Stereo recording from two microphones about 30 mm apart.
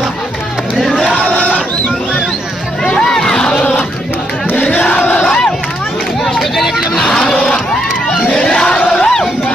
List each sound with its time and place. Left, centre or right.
0.7 s crowd: centre
1.2 s battle cry: left
2.8 s music: left
5.2 s crowd: left
6.2 s a sound: centre
7.0 s a sound: centre
8.1 s crowd: left
8.6 s battle cry: left